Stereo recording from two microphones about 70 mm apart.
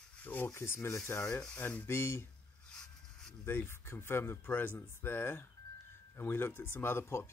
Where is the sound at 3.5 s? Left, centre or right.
Left.